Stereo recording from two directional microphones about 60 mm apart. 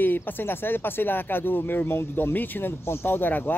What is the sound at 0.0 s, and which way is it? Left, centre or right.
Speech, left.